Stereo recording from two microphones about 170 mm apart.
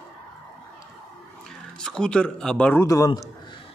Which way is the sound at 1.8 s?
5° left (ahead or behind).